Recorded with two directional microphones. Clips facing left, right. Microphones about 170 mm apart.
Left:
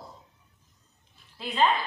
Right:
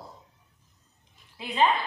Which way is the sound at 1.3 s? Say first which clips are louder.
Even; 15° right (ahead or behind).